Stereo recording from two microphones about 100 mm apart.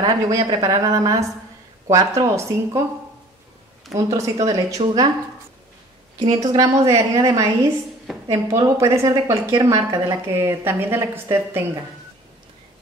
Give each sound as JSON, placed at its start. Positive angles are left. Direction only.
{"t": 0.3, "sound": "a woman's voice", "side_deg": -35}
{"t": 3.9, "sound": "a woman's voice", "side_deg": -35}
{"t": 6.1, "sound": "a woman's voice", "side_deg": -40}